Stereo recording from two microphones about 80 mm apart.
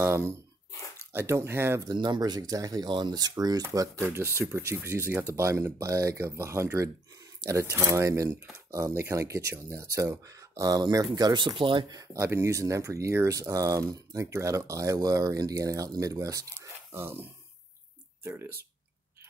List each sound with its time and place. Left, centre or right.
0.0 s speech: right
2.0 s speech: right
2.9 s speech: right
3.7 s speech: right
11.9 s speech: right
12.2 s speech: right
16.5 s speech: right